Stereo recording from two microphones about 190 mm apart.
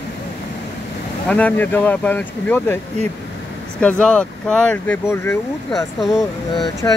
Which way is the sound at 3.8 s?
5° left (ahead or behind).